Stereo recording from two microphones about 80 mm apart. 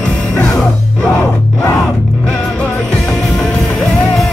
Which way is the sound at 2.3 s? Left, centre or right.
Centre.